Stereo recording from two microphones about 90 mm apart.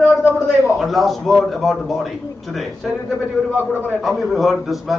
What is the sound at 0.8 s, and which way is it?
A man's voice, centre (ahead or behind).